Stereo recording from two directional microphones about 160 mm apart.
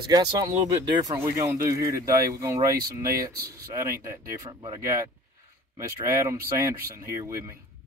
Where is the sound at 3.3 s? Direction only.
75° right (ahead or behind).